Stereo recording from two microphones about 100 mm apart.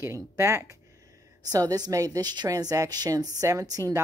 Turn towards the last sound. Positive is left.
turn(degrees=-35)  # may be behind; listen again after turning